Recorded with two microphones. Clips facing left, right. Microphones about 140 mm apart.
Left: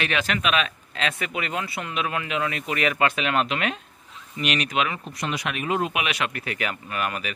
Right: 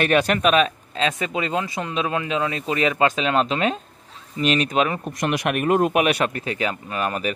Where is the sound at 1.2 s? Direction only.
25° right (ahead or behind).